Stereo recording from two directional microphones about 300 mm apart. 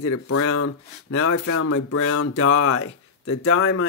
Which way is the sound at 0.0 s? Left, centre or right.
Left.